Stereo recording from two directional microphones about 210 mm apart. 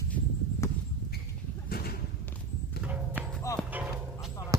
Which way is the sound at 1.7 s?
45° left (ahead or behind).